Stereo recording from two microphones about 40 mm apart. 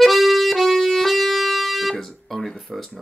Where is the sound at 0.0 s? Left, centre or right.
Centre.